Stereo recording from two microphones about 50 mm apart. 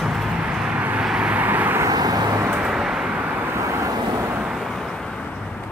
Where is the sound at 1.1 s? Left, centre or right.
Right.